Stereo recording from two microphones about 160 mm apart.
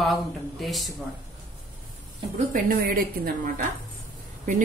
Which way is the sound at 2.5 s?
60° right (ahead or behind).